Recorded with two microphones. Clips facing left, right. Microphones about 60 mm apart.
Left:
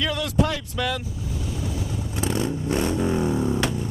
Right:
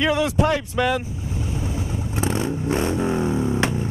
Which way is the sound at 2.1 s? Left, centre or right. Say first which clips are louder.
Right 2 dB; right.